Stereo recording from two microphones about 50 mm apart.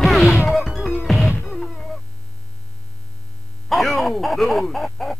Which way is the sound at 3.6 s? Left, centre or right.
Centre.